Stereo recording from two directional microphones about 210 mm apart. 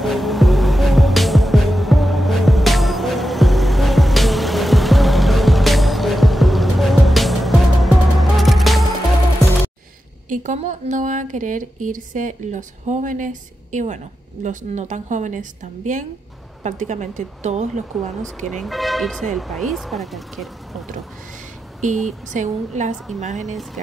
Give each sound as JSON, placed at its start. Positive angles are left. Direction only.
{"t": 0.0, "sound": "music", "side_deg": 0}
{"t": 10.3, "sound": "speech", "side_deg": -35}
{"t": 18.2, "sound": "speech", "side_deg": 0}
{"t": 22.3, "sound": "speech", "side_deg": -35}
{"t": 23.4, "sound": "speech", "side_deg": 0}